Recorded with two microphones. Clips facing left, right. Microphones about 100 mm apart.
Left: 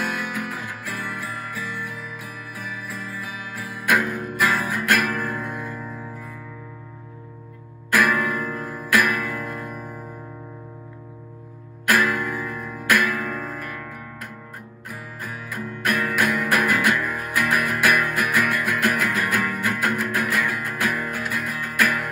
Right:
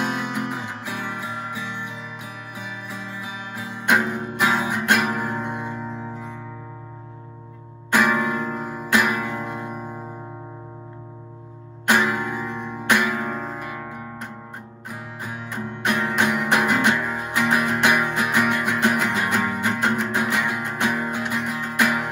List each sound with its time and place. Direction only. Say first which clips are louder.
0.0 s music: right 2 dB; 25° right (ahead or behind)
7.9 s music: right 1 dB; 25° right (ahead or behind)
11.8 s music: even; 25° right (ahead or behind)